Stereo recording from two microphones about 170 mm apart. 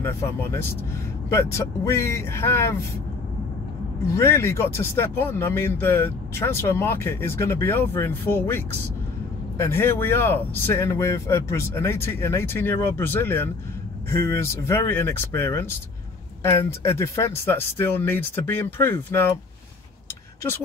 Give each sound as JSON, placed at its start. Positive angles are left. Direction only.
{"t": 0.0, "sound": "speech", "side_deg": 15}
{"t": 1.9, "sound": "speech", "side_deg": 15}
{"t": 4.1, "sound": "speech", "side_deg": 15}